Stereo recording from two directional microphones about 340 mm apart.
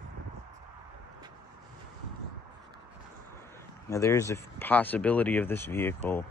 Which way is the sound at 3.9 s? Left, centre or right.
Centre.